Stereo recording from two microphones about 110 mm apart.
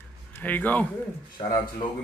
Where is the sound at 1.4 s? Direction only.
55° left (ahead or behind).